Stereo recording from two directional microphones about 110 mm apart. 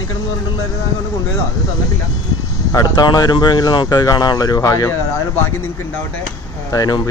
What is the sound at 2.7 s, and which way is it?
Speech, 35° left (ahead or behind).